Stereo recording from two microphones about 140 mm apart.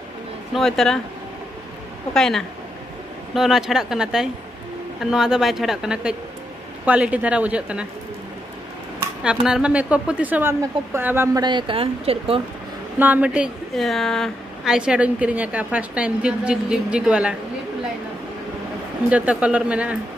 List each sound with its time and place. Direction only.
0.6 s speech: 5° left (ahead or behind)
2.1 s a woman's voice: centre (ahead or behind)
9.2 s a woman's voice: 5° right (ahead or behind)
11.3 s speech: 35° right (ahead or behind)
13.0 s a woman's voice: 10° right (ahead or behind)
19.0 s a woman's voice: 10° right (ahead or behind)